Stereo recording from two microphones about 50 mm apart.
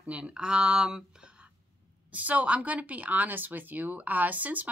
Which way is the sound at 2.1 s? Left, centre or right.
Right.